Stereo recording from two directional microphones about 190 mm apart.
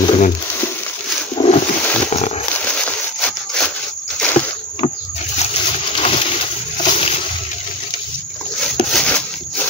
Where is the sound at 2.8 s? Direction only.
5° left (ahead or behind).